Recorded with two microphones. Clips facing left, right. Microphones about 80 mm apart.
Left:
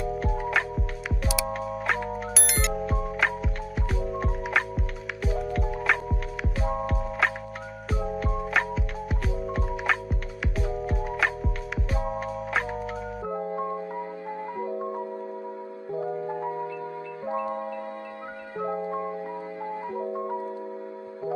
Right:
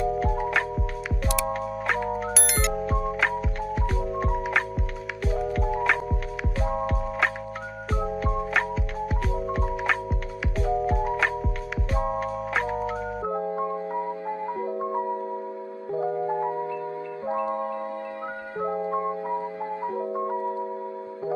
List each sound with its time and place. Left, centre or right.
0.0 s music: centre
17.3 s marimba: right
18.9 s music: right